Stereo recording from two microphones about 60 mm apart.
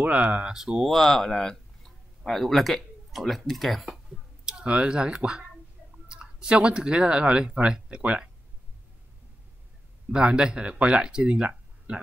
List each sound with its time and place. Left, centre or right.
0.0 s speech: right
0.5 s speech: centre
0.8 s speech: centre
4.6 s speech: centre
10.1 s speech: centre